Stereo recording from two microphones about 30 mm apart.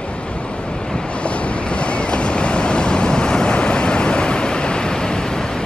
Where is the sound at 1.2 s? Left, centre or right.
Left.